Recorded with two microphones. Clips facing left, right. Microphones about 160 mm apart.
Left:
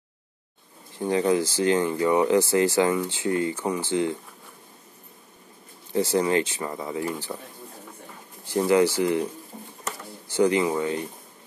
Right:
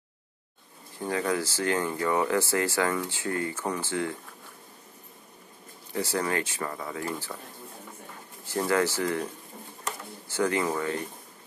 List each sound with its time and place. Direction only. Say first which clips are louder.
0.9 s speech: left 6 dB; 20° left (ahead or behind)
5.9 s speech: left 7 dB; 20° left (ahead or behind)
8.6 s speech: left 6 dB; 15° left (ahead or behind)
10.3 s speech: left 5 dB; 15° left (ahead or behind)